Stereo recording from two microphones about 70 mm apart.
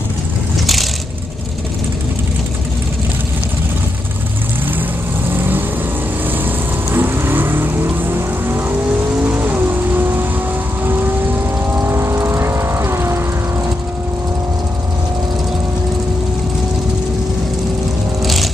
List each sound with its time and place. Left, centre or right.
5.3 s vehicle: right
18.2 s vehicle: centre